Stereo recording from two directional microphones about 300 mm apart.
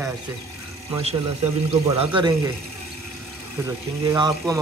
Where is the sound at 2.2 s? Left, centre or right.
Centre.